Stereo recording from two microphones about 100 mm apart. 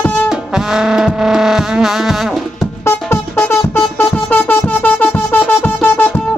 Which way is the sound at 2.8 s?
25° left (ahead or behind).